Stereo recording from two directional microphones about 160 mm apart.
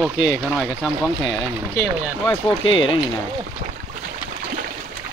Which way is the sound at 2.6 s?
30° left (ahead or behind).